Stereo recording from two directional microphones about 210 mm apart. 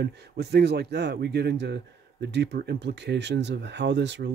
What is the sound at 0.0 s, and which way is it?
Speech, 50° right (ahead or behind).